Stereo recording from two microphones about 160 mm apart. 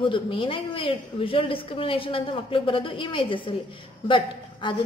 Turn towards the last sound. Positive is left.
turn(degrees=30)  # may be behind; listen again after turning